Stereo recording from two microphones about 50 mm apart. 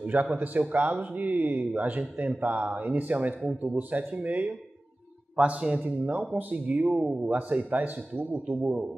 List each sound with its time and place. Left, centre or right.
0.0 s speech: right
5.3 s a man's voice: right